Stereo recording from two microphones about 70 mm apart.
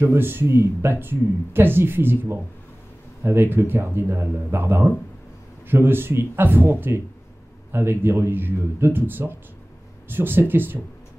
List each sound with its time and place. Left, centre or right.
0.0 s speech: right